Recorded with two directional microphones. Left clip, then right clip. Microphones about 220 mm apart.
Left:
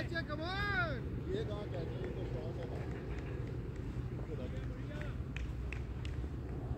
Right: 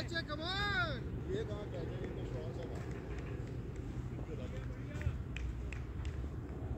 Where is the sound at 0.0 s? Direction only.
40° right (ahead or behind).